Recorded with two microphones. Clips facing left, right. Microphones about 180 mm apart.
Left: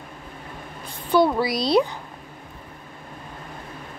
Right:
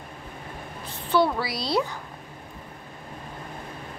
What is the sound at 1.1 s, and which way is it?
Speech, 15° left (ahead or behind).